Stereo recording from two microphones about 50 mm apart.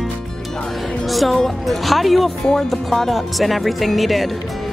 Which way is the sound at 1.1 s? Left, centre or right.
Centre.